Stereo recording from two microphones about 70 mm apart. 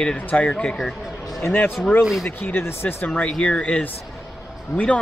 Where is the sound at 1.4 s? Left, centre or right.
Left.